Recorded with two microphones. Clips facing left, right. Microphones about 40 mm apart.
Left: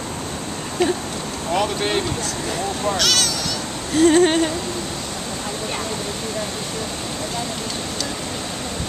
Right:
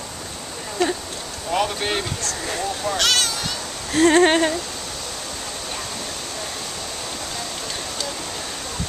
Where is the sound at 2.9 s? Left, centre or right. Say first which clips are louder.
Even; centre.